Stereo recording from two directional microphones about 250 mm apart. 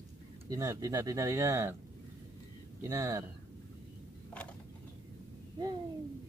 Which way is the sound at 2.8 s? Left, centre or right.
Centre.